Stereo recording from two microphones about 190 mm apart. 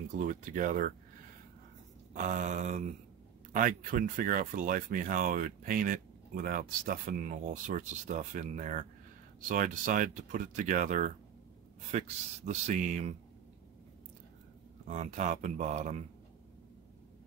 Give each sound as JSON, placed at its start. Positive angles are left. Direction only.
{"t": 0.2, "sound": "speech", "side_deg": -45}
{"t": 2.1, "sound": "speech", "side_deg": -40}
{"t": 14.9, "sound": "speech", "side_deg": -40}